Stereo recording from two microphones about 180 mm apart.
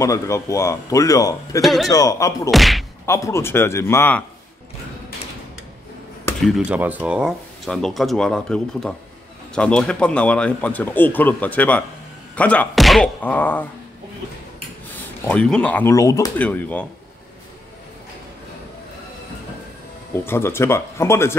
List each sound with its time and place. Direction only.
0.0 s speech: 15° left (ahead or behind)
1.6 s speech: centre (ahead or behind)
1.9 s speech: 20° left (ahead or behind)
2.5 s speech: centre (ahead or behind)
3.1 s speech: 15° left (ahead or behind)
6.4 s speech: 5° right (ahead or behind)
14.9 s speech: 10° left (ahead or behind)
16.3 s speech: 10° left (ahead or behind)
20.1 s speech: 15° left (ahead or behind)